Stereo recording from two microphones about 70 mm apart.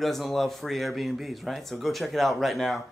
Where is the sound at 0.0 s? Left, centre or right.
Centre.